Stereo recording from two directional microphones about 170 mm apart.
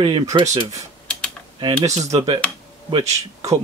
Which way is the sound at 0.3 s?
25° right (ahead or behind).